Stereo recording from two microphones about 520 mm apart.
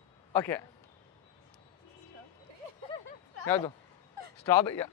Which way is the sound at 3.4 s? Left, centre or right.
Centre.